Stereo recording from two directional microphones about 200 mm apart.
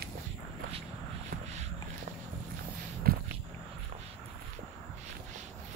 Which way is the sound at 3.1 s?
50° right (ahead or behind).